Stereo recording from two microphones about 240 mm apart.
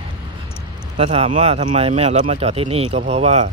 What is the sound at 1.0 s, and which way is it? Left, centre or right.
Speech, right.